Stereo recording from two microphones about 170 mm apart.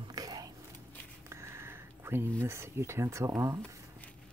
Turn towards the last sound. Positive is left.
turn(degrees=-15)  # may be behind; listen again after turning